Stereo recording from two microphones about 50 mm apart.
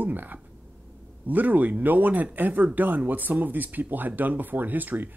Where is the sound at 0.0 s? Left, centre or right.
Right.